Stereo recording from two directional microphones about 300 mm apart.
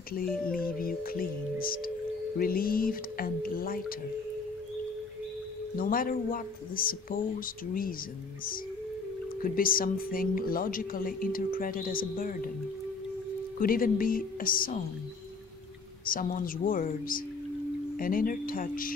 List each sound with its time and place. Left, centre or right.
0.3 s music: centre
0.7 s speech: left
5.8 s speech: left
9.4 s speech: left
13.6 s speech: left
16.1 s speech: left